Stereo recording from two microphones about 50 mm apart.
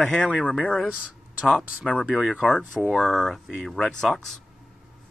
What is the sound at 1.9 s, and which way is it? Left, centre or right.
Speech, left.